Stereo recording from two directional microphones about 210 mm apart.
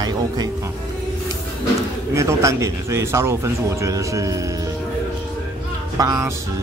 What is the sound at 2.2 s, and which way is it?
Speech, 15° right (ahead or behind).